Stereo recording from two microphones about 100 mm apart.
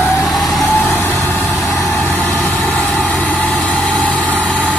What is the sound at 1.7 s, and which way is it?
Vehicle, centre (ahead or behind).